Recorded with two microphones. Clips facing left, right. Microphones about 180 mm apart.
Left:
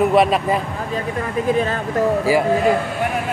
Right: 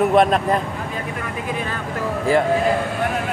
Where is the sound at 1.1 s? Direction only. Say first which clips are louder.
Left 11 dB; 40° left (ahead or behind).